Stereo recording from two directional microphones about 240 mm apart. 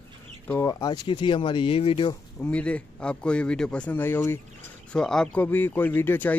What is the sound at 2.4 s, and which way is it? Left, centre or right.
Speech, centre.